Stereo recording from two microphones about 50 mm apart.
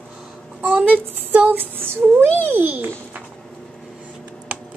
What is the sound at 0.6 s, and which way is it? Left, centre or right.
Speech, right.